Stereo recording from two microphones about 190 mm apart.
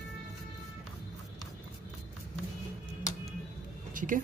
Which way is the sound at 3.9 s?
45° right (ahead or behind).